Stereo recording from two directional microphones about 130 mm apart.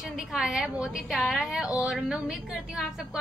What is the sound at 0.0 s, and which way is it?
A woman's voice, centre (ahead or behind).